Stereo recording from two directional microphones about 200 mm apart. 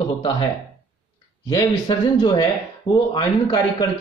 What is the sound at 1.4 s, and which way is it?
Speech, 20° left (ahead or behind).